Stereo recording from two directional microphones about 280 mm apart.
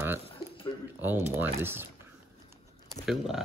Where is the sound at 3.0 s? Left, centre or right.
Centre.